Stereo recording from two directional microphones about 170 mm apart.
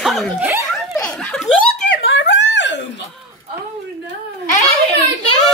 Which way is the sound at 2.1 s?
90° left.